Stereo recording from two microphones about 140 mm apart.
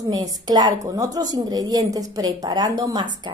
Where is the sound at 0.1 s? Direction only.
30° right (ahead or behind).